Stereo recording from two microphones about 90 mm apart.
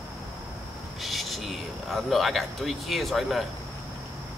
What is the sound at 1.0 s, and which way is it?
Speech, centre (ahead or behind).